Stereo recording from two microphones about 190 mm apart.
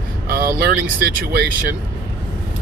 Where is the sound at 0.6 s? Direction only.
55° right (ahead or behind).